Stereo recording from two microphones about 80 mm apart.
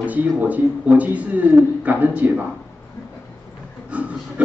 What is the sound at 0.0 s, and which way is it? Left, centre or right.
A man's voice, centre.